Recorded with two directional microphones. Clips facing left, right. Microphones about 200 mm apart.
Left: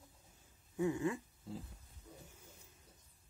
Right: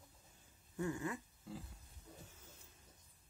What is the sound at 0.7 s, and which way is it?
Speech, 25° left (ahead or behind).